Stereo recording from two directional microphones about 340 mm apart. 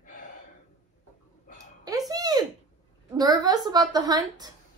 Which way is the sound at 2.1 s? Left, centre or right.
Centre.